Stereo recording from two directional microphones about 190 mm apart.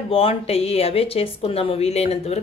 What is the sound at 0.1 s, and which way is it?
A woman's voice, 30° left (ahead or behind).